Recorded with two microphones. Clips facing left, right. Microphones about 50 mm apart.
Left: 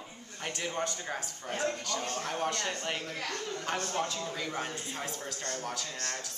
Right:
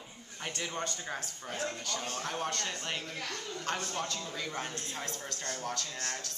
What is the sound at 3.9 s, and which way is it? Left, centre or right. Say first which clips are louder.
Speech: left 3 dB; centre.